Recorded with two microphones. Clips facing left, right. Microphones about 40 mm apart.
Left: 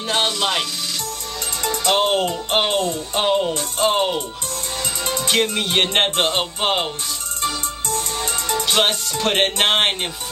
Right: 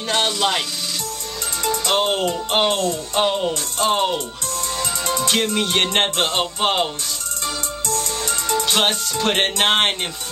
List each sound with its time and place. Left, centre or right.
0.1 s speech: centre
1.6 s music: centre
2.7 s music: left
3.2 s music: centre
5.3 s music: centre
7.8 s music: left
8.5 s music: centre